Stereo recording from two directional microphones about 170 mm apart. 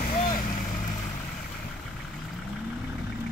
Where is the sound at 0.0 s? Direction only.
55° left (ahead or behind).